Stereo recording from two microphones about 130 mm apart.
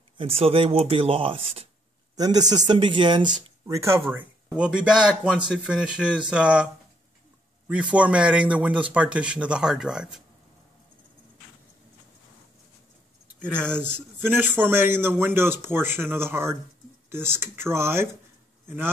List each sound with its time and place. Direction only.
0.2 s speech: 45° right (ahead or behind)
2.1 s a man's voice: 30° right (ahead or behind)
3.6 s speech: 25° right (ahead or behind)
4.1 s a man's voice: 10° right (ahead or behind)
7.9 s a man's voice: 10° right (ahead or behind)
13.7 s a man's voice: 15° right (ahead or behind)